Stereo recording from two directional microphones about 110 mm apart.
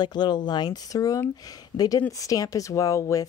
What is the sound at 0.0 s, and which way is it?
Speech, 40° left (ahead or behind).